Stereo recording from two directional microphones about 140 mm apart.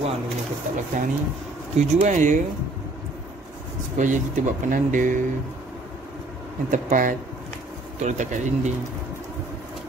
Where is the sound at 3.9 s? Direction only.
60° right (ahead or behind).